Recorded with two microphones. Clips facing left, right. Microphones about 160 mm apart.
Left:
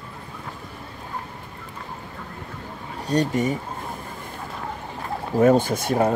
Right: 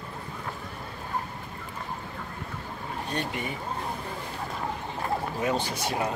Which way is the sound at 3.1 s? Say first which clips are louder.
Left 12 dB; 40° left (ahead or behind).